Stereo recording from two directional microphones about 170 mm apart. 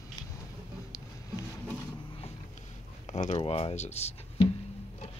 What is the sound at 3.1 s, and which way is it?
Speech, 40° left (ahead or behind).